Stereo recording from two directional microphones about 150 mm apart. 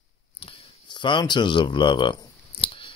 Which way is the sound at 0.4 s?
35° left (ahead or behind).